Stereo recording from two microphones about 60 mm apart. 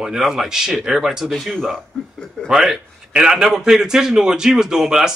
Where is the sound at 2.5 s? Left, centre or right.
Centre.